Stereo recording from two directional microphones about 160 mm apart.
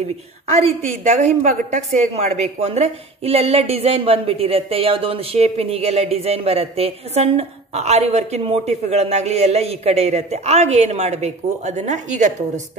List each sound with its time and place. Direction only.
1.1 s speech: 45° right (ahead or behind)